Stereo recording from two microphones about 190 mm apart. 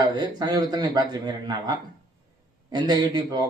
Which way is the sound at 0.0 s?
20° right (ahead or behind).